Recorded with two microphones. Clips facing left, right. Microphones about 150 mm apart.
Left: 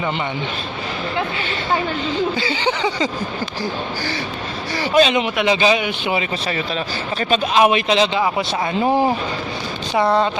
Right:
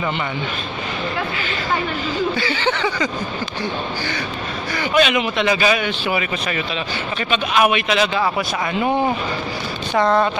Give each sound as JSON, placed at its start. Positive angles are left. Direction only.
{"t": 2.3, "sound": "a man's voice", "side_deg": 20}
{"t": 4.7, "sound": "a man's voice", "side_deg": 30}
{"t": 7.2, "sound": "a man's voice", "side_deg": 40}
{"t": 9.9, "sound": "speech", "side_deg": 15}